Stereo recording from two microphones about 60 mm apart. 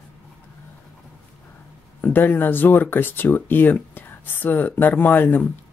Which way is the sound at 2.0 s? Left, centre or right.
Left.